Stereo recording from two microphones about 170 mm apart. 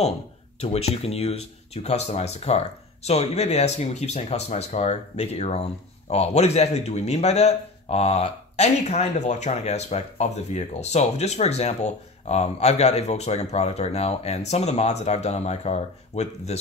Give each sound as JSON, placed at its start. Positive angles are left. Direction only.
{"t": 0.6, "sound": "speech", "side_deg": 35}